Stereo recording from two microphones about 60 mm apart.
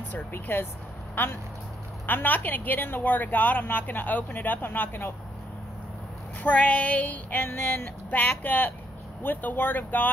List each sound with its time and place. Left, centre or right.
0.1 s speech: left
6.4 s child singing: left
9.2 s speech: left